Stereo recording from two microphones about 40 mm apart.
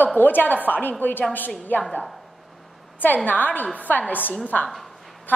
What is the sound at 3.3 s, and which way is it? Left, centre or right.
A woman's voice, left.